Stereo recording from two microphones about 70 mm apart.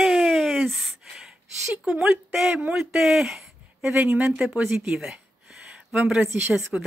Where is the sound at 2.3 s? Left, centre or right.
Centre.